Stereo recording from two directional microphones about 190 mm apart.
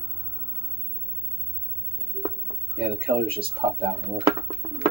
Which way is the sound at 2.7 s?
30° right (ahead or behind).